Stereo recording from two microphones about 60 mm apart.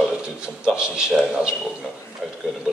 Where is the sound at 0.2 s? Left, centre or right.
Centre.